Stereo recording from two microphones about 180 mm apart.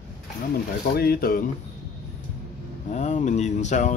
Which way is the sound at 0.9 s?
55° left (ahead or behind).